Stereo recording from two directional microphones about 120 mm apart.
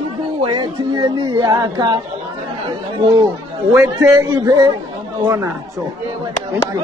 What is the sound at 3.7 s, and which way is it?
Speech, 15° right (ahead or behind).